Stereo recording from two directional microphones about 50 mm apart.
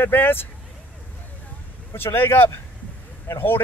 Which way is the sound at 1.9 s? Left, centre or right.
Left.